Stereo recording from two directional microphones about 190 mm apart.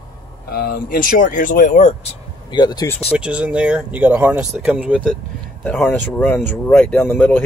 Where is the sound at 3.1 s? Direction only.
5° right (ahead or behind).